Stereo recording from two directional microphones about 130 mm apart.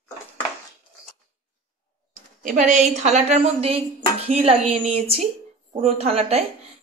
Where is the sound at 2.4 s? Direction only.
80° right; by 6.5 s 50° right (ahead or behind).